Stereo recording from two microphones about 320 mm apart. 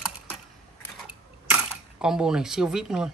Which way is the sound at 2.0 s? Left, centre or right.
Centre.